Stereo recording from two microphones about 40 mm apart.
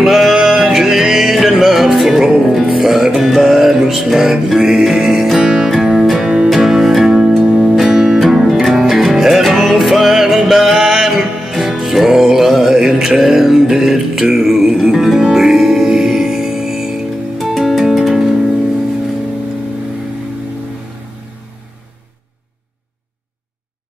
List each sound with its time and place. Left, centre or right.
0.0 s music: centre
6.1 s music: right
6.5 s music: centre